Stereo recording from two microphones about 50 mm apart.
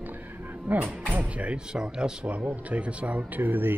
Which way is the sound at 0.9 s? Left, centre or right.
Right.